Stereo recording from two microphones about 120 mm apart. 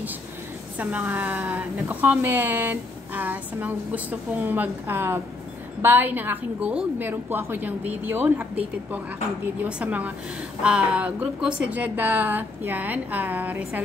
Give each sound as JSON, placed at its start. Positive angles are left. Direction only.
{"t": 0.7, "sound": "speech", "side_deg": -15}